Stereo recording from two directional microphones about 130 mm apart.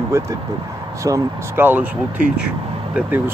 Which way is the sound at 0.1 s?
20° right (ahead or behind).